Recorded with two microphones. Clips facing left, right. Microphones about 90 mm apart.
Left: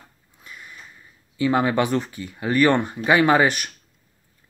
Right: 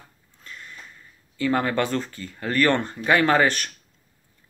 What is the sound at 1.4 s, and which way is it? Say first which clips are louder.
Speech: left 3 dB; 10° left (ahead or behind).